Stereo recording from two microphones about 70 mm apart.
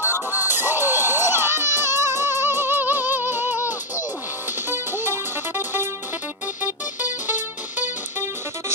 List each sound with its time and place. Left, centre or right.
0.0 s music: right